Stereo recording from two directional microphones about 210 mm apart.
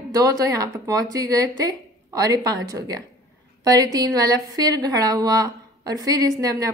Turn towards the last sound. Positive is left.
turn(degrees=-15)  # may be behind; listen again after turning